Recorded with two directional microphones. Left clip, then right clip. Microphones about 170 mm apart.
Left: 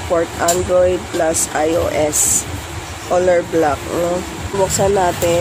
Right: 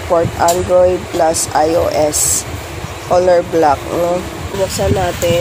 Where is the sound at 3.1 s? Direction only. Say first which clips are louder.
Right 3 dB; centre (ahead or behind).